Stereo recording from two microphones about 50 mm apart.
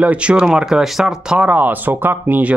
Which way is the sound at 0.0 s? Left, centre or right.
Right.